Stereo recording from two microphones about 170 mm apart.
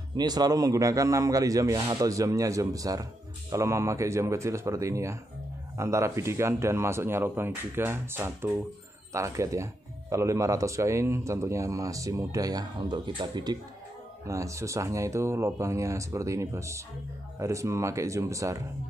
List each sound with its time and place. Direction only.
0.1 s a man's voice: 25° right (ahead or behind)